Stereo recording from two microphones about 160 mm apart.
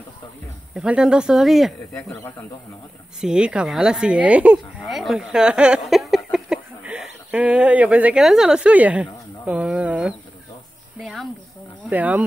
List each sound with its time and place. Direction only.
0.7 s speech: 5° right (ahead or behind)
2.0 s a man's voice: 15° left (ahead or behind)
3.2 s speech: 5° right (ahead or behind)
11.0 s music: centre (ahead or behind)
11.9 s speech: 10° right (ahead or behind)